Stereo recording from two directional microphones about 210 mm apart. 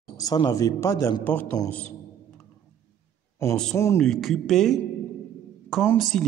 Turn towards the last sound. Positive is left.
turn(degrees=0)  # may be behind; listen again after turning